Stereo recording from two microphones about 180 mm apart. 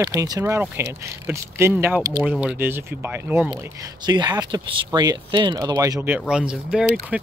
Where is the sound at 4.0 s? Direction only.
25° right (ahead or behind).